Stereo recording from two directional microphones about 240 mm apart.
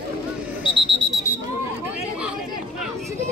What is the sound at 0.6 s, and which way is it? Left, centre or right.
Alarm, centre.